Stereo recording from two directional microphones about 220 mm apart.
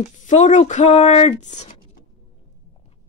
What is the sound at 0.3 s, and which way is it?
Speech, 30° left (ahead or behind).